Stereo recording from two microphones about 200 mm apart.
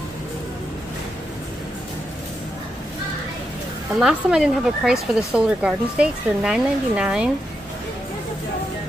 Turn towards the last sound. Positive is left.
turn(degrees=-5)  # may be behind; listen again after turning